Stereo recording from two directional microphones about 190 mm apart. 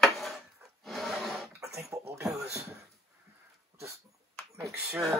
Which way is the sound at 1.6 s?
15° right (ahead or behind).